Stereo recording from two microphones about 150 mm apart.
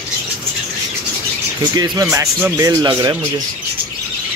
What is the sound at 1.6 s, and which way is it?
Speech, 25° right (ahead or behind).